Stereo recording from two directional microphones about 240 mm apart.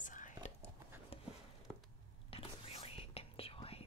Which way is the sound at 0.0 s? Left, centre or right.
Left.